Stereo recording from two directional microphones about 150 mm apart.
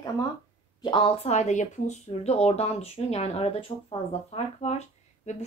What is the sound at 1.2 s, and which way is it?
Speech, 50° left (ahead or behind).